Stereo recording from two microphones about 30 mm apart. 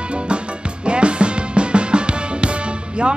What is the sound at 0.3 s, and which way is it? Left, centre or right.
Music, right.